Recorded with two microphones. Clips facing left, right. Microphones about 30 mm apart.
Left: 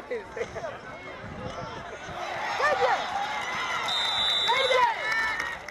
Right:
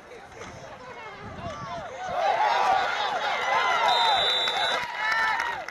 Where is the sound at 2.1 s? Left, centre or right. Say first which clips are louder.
Right 9 dB; right.